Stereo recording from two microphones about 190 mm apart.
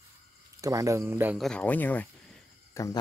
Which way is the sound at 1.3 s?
5° left (ahead or behind).